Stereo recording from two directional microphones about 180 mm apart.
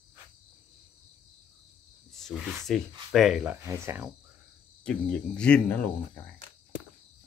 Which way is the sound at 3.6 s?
15° right (ahead or behind).